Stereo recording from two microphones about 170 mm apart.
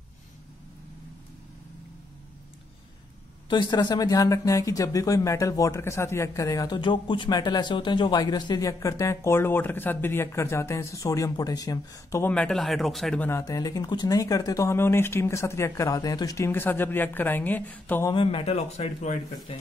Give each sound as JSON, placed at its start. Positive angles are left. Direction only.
{"t": 3.4, "sound": "speech", "side_deg": 25}
{"t": 13.4, "sound": "speech", "side_deg": 20}
{"t": 18.1, "sound": "speech", "side_deg": 30}